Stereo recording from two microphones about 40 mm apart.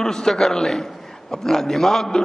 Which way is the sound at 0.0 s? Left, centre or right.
Centre.